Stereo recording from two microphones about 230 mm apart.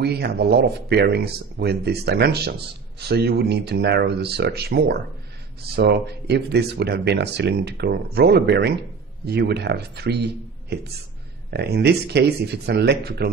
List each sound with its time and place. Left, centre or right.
0.0 s speech: right